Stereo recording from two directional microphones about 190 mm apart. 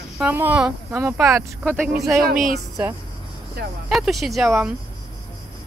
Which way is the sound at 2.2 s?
50° right (ahead or behind).